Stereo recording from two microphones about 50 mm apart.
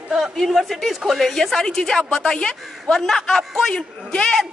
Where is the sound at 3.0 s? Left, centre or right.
Centre.